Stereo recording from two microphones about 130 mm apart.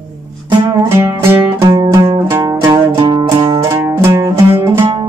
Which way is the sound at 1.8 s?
30° right (ahead or behind).